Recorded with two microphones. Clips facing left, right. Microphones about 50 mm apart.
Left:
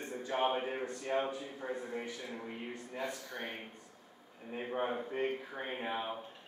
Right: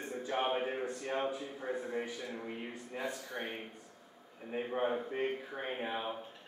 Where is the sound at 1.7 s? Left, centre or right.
Centre.